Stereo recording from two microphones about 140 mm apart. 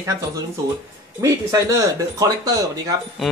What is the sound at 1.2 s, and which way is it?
Speech, 25° right (ahead or behind).